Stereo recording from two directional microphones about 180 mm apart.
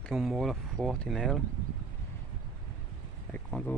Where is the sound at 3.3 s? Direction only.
10° left (ahead or behind).